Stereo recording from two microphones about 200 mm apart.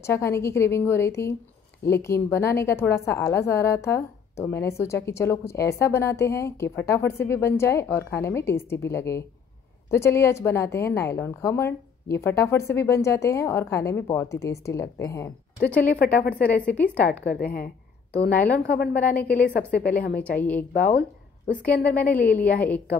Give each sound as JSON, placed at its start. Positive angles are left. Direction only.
{"t": 0.0, "sound": "a woman's voice", "side_deg": 15}
{"t": 16.0, "sound": "a woman's voice", "side_deg": 50}
{"t": 16.3, "sound": "a woman's voice", "side_deg": 5}
{"t": 17.2, "sound": "a woman's voice", "side_deg": 55}
{"t": 19.1, "sound": "a woman's voice", "side_deg": 5}
{"t": 19.7, "sound": "a woman's voice", "side_deg": 50}
{"t": 20.3, "sound": "a woman's voice", "side_deg": 10}
{"t": 20.7, "sound": "a woman's voice", "side_deg": 45}
{"t": 21.8, "sound": "a woman's voice", "side_deg": 5}